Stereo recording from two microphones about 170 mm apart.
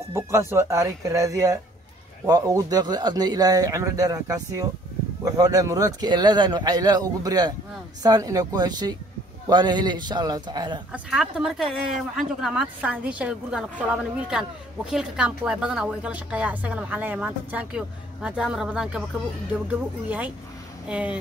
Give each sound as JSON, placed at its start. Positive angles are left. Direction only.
{"t": 0.1, "sound": "speech", "side_deg": -15}
{"t": 10.9, "sound": "speech", "side_deg": -5}
{"t": 20.9, "sound": "speech", "side_deg": -5}